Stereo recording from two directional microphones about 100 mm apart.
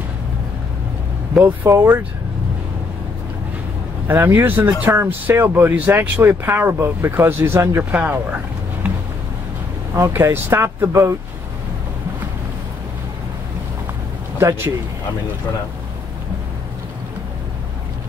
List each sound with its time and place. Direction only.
1.4 s speech: 20° right (ahead or behind)
4.1 s speech: 20° right (ahead or behind)
7.9 s speech: 15° right (ahead or behind)
8.8 s a sound: 15° right (ahead or behind)
9.9 s speech: 30° right (ahead or behind)